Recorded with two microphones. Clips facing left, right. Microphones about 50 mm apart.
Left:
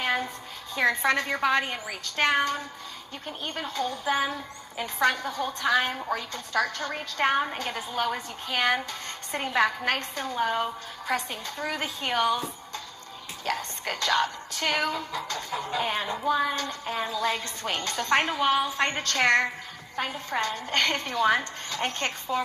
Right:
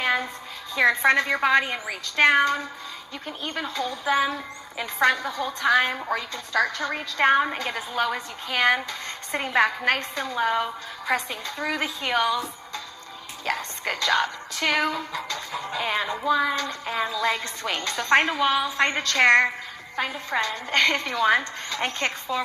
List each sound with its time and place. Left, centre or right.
0.7 s a woman's voice: right
13.5 s speech: right
16.5 s a woman's voice: right